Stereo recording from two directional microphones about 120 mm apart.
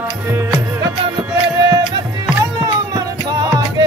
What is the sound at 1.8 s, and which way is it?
Music, 35° right (ahead or behind).